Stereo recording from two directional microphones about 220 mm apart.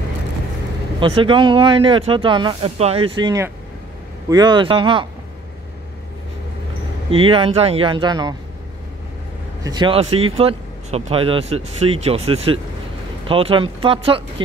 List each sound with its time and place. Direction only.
0.9 s speech: 25° right (ahead or behind)
7.1 s speech: 25° right (ahead or behind)
9.6 s speech: 20° right (ahead or behind)